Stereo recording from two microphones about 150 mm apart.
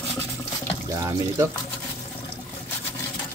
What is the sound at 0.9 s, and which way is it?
Speech, 20° right (ahead or behind).